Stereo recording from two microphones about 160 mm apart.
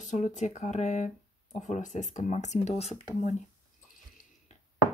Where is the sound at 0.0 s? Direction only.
50° left (ahead or behind).